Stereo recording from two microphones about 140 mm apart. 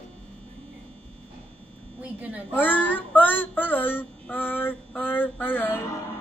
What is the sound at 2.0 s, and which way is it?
Speech, 10° right (ahead or behind).